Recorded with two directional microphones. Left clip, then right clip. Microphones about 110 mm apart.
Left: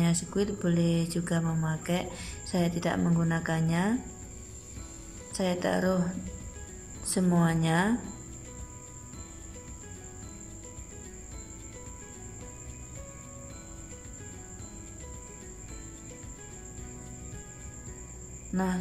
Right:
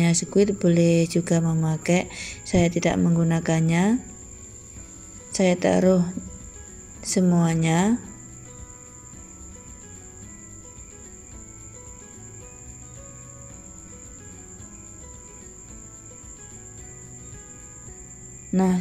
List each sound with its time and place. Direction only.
0.0 s speech: 35° right (ahead or behind)
5.3 s speech: 30° right (ahead or behind)
7.0 s speech: 20° right (ahead or behind)
18.5 s music: 35° right (ahead or behind)